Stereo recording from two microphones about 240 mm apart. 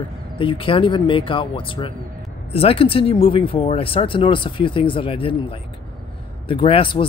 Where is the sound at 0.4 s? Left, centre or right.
Left.